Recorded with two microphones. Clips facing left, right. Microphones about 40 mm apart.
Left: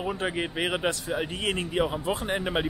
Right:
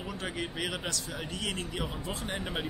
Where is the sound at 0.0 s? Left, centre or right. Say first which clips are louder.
Left 7 dB; left.